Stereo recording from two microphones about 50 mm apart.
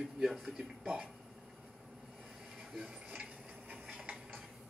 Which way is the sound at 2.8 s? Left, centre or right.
Right.